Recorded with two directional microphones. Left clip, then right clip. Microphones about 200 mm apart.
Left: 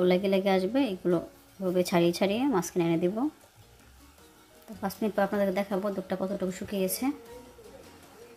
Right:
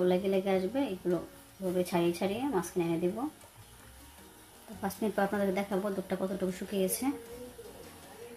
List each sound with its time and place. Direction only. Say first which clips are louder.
0.0 s speech: left 4 dB; 40° left (ahead or behind)
4.8 s speech: left 3 dB; 25° left (ahead or behind)